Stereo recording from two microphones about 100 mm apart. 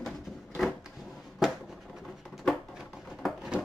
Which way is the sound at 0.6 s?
Centre (ahead or behind).